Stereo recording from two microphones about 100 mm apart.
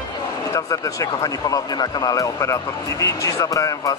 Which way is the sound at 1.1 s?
40° left (ahead or behind).